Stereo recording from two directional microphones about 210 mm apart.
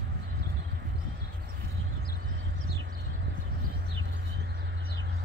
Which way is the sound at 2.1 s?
55° right (ahead or behind).